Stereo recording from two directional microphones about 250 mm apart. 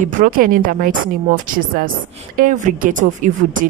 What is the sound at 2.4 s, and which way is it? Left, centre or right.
Speech, right.